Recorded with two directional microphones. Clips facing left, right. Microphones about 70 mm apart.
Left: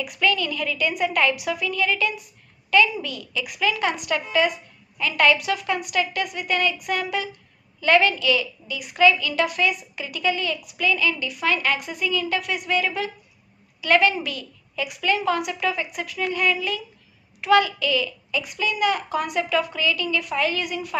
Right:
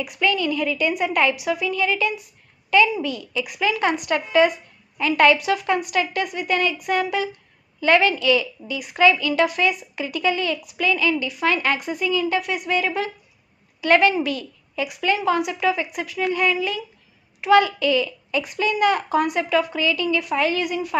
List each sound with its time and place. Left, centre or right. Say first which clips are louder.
0.0 s a woman's voice: right 1 dB; right